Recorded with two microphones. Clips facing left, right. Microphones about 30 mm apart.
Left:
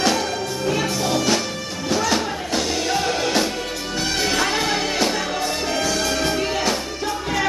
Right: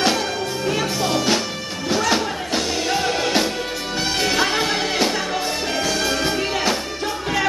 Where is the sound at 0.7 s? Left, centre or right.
Centre.